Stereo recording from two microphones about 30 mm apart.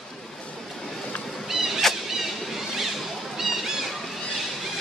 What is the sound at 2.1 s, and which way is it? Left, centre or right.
Vehicle, centre.